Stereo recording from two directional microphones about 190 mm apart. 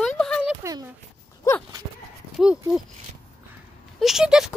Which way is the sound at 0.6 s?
20° right (ahead or behind).